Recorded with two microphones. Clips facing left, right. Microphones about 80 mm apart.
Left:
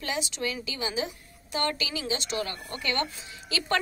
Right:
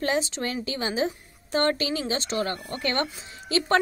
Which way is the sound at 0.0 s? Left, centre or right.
Right.